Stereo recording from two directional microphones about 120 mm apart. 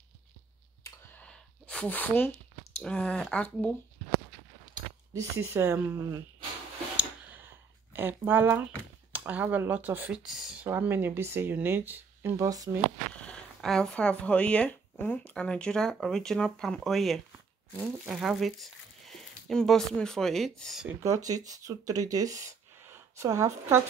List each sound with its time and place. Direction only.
0.8 s a sound: 10° left (ahead or behind)
2.8 s speech: 5° left (ahead or behind)
5.1 s speech: 20° right (ahead or behind)
7.2 s a sound: 15° right (ahead or behind)
9.1 s speech: 15° right (ahead or behind)
10.7 s speech: 15° right (ahead or behind)
12.4 s speech: 30° right (ahead or behind)
13.1 s speech: 10° left (ahead or behind)
21.0 s speech: 30° right (ahead or behind)
22.8 s speech: 20° right (ahead or behind)